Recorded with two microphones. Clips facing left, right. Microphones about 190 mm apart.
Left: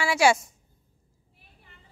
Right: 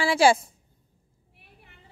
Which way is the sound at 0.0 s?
30° right (ahead or behind).